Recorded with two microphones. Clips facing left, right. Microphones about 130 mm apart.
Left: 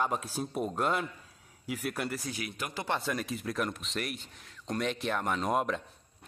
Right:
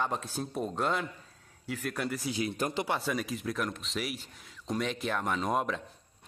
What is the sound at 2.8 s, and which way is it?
Speech, centre (ahead or behind).